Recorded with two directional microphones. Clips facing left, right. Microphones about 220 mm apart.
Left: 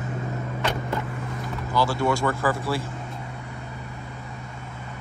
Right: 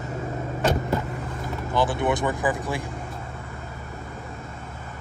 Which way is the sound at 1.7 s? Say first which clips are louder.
Even; 20° right (ahead or behind).